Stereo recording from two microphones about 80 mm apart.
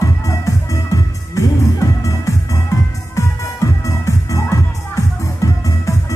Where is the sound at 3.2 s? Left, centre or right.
Left.